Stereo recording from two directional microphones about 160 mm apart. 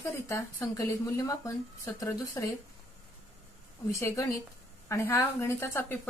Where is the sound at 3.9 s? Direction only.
20° left (ahead or behind).